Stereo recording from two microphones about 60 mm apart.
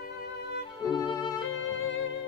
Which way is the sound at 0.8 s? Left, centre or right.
Left.